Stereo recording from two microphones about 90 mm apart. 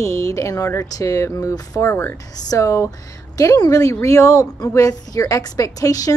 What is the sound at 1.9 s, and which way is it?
Speech, 25° left (ahead or behind).